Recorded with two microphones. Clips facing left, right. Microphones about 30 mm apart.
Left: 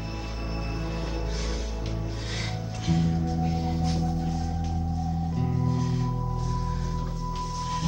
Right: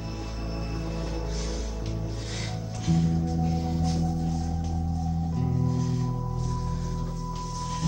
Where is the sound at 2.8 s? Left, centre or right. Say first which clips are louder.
Even; centre.